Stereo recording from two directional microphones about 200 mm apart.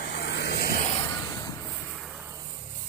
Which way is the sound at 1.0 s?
20° left (ahead or behind).